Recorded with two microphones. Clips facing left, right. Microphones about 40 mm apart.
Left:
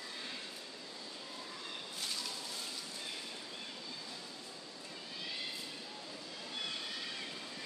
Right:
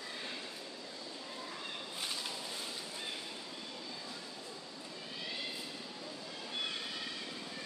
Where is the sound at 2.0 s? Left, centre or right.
Centre.